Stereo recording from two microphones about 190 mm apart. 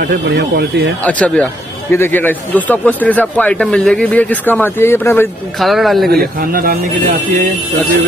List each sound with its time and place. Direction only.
0.0 s speech: 55° right (ahead or behind)
1.0 s a man's voice: 5° left (ahead or behind)
5.6 s speech: centre (ahead or behind)
6.0 s speech: 50° right (ahead or behind)